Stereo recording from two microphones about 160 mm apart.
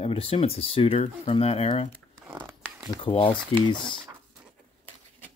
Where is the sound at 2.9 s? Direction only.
35° left (ahead or behind).